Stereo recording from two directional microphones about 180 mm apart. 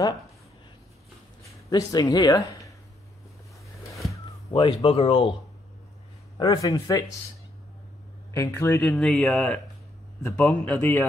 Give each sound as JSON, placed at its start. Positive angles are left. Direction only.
{"t": 1.4, "sound": "speech", "side_deg": 20}
{"t": 3.9, "sound": "a sound", "side_deg": 15}
{"t": 6.3, "sound": "speech", "side_deg": 25}
{"t": 8.3, "sound": "a man's voice", "side_deg": 15}